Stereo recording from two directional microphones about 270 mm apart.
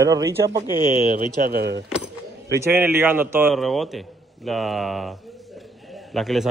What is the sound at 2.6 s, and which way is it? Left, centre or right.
A man's voice, centre.